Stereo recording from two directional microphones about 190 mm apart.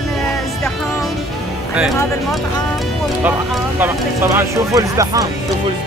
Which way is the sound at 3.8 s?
15° right (ahead or behind).